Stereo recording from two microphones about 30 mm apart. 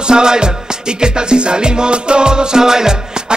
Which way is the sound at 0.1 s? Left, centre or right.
Right.